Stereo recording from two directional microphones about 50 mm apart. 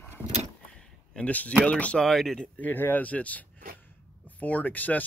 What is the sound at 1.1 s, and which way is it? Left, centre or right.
Speech, left.